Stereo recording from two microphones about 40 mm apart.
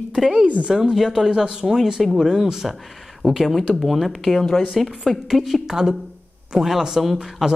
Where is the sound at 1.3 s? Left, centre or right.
Centre.